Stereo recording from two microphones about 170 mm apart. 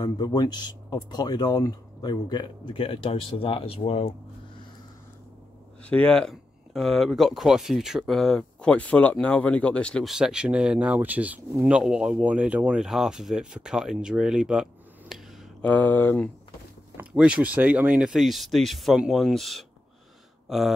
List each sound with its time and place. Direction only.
0.0 s speech: 25° left (ahead or behind)
5.9 s speech: 5° left (ahead or behind)
15.6 s speech: 10° left (ahead or behind)
16.9 s speech: 5° right (ahead or behind)